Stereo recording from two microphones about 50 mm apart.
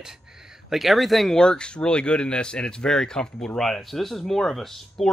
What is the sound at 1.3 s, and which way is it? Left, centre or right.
Speech, centre.